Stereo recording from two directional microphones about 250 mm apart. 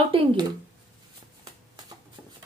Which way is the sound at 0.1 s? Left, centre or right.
Right.